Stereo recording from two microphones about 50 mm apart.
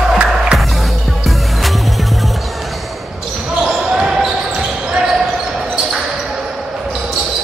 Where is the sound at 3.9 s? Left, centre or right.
Centre.